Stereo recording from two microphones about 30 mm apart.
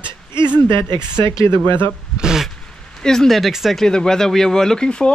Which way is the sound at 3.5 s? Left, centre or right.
Centre.